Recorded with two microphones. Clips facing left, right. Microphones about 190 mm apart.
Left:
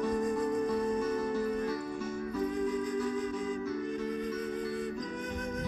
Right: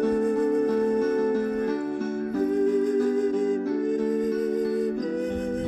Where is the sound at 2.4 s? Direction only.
50° right (ahead or behind).